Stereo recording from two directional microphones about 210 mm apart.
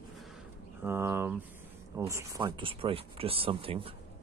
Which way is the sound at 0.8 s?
10° right (ahead or behind).